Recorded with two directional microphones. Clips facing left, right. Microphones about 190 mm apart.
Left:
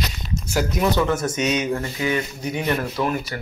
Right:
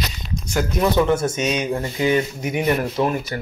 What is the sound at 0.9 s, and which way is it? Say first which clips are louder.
Speech: right 3 dB; 15° right (ahead or behind).